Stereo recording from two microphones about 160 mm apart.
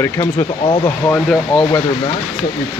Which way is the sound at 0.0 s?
15° left (ahead or behind).